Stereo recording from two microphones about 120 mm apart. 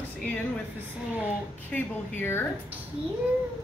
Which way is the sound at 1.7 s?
20° left (ahead or behind).